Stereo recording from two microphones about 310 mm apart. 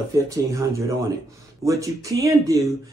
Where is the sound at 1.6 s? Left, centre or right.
Centre.